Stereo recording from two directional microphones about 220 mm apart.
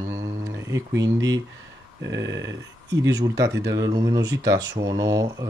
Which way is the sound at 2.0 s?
55° right (ahead or behind).